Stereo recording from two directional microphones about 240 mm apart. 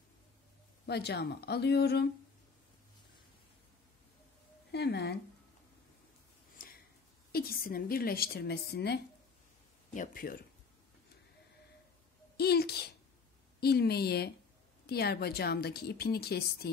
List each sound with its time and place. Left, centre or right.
0.8 s speech: left
4.7 s speech: left
6.6 s a sound: left
7.3 s a woman's voice: left
12.4 s a woman's voice: left